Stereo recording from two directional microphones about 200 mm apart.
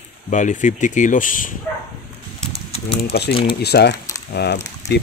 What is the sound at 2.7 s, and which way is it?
Speech, 30° left (ahead or behind).